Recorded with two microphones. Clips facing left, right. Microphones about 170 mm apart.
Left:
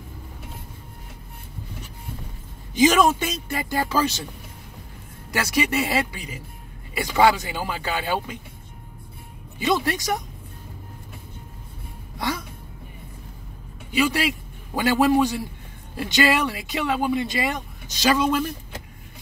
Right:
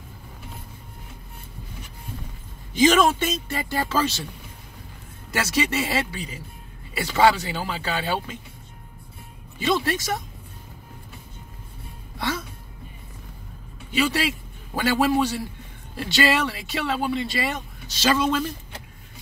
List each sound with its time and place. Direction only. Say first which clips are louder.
2.8 s speech: even; 15° left (ahead or behind)
5.5 s speech: left 2 dB; 10° left (ahead or behind)
9.6 s speech: left 1 dB; 15° left (ahead or behind)
12.2 s speech: even; 15° left (ahead or behind)
13.9 s a man's voice: left 1 dB; 15° left (ahead or behind)